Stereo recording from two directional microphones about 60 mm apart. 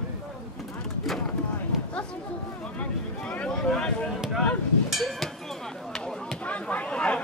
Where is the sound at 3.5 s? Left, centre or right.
Centre.